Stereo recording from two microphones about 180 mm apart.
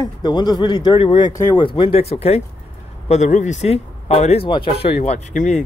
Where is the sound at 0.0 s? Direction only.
25° left (ahead or behind).